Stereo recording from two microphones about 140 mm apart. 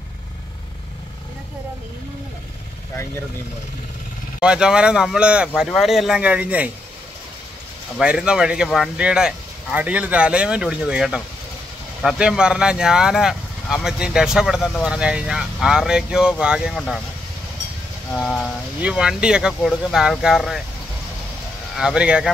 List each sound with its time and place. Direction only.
4.4 s speech: 5° right (ahead or behind)
8.0 s speech: 5° right (ahead or behind)
16.7 s speech: 5° left (ahead or behind)
18.1 s speech: centre (ahead or behind)
21.7 s speech: 5° right (ahead or behind)